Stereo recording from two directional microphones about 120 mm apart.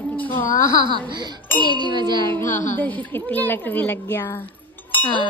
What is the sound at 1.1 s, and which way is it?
A woman's voice, 35° right (ahead or behind).